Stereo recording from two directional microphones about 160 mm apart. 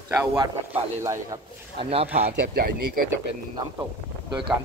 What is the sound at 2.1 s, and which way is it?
Speech, 70° right (ahead or behind).